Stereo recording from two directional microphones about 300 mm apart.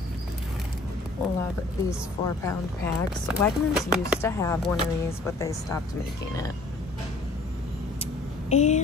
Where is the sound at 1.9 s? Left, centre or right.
Centre.